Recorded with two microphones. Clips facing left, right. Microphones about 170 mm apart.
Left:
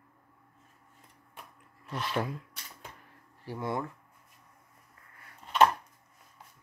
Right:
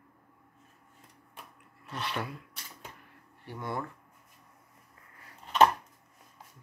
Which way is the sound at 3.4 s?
30° left (ahead or behind).